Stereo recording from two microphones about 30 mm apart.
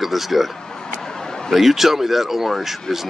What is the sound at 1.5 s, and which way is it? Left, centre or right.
Speech, centre.